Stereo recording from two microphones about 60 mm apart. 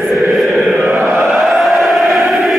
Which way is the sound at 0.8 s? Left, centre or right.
Right.